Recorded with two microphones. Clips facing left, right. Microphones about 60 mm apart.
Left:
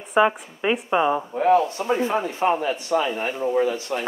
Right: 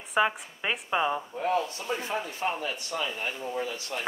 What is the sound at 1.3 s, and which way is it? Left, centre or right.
Speech, left.